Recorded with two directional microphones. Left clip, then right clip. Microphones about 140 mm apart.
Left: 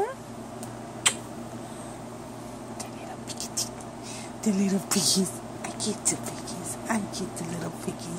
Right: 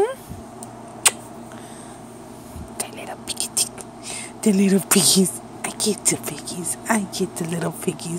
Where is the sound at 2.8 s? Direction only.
55° right (ahead or behind).